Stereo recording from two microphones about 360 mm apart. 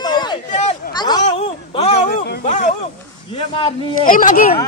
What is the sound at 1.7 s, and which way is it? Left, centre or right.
Speech, centre.